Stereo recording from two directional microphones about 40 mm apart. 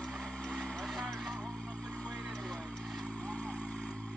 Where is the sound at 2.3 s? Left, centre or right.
Centre.